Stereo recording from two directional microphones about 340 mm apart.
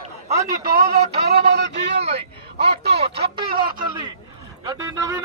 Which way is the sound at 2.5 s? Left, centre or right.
Right.